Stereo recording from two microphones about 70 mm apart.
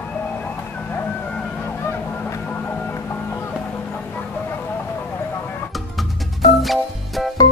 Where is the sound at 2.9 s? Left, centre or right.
Left.